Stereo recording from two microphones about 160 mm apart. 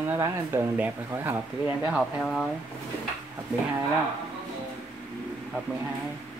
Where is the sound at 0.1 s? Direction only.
15° right (ahead or behind).